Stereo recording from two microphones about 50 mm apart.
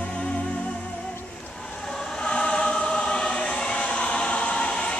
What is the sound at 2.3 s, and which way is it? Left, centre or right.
Choir, centre.